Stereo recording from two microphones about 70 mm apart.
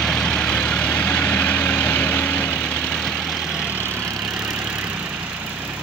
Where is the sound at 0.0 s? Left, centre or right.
Centre.